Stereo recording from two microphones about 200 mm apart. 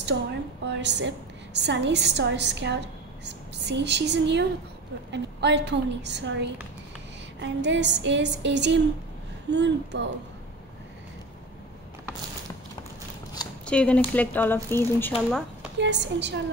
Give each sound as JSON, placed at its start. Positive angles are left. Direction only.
{"t": 0.0, "sound": "a woman's voice", "side_deg": -60}
{"t": 13.7, "sound": "speech", "side_deg": 5}
{"t": 15.8, "sound": "a woman's voice", "side_deg": -60}